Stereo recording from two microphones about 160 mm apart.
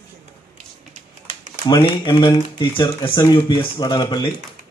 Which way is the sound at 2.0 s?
30° left (ahead or behind).